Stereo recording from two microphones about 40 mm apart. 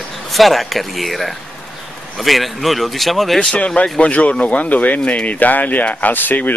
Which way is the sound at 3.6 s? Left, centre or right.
Left.